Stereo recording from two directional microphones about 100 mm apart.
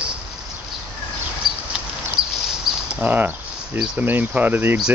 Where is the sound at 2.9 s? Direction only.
15° right (ahead or behind).